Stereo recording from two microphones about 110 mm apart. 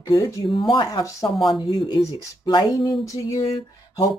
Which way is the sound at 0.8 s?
35° left (ahead or behind).